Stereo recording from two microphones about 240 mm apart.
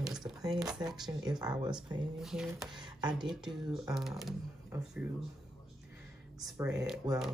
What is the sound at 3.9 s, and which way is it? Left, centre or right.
Speech, centre.